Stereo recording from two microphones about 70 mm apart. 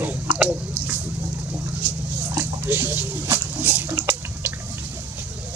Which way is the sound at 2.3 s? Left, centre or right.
Right.